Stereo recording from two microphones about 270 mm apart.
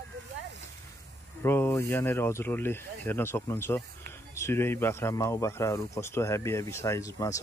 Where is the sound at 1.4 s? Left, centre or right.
Centre.